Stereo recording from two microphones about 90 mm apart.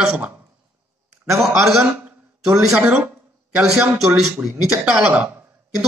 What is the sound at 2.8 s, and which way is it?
Speech, 20° right (ahead or behind).